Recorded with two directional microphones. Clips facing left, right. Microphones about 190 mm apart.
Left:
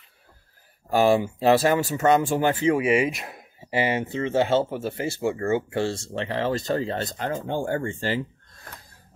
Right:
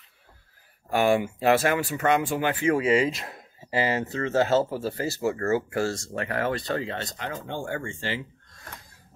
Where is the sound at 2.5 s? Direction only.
20° left (ahead or behind).